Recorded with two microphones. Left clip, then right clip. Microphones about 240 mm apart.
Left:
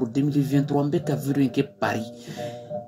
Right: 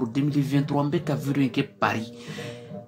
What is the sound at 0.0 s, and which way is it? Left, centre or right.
Speech, centre.